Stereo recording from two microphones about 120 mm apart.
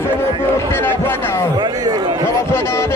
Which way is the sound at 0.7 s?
20° left (ahead or behind).